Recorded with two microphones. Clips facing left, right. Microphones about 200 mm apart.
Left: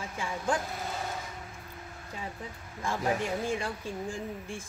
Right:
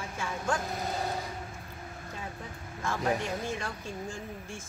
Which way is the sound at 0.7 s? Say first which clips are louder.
Right 3 dB; 40° right (ahead or behind).